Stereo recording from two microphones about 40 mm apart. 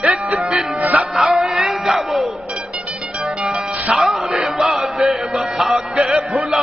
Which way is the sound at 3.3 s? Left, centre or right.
Centre.